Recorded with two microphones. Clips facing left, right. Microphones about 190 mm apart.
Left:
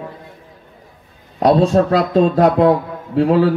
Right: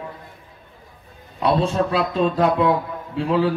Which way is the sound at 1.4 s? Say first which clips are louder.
Left 7 dB; 40° left (ahead or behind).